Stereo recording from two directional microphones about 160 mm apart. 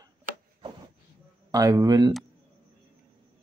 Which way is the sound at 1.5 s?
20° right (ahead or behind).